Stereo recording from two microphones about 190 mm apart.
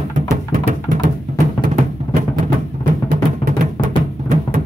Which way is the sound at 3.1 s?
45° right (ahead or behind).